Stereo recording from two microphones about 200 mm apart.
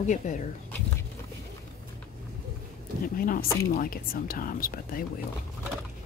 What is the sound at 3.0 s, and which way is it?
Speech, 45° left (ahead or behind).